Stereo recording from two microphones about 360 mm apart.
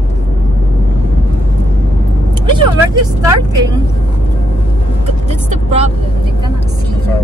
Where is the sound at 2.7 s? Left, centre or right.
Centre.